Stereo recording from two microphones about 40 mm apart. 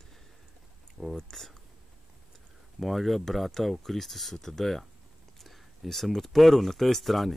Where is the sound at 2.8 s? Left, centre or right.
Centre.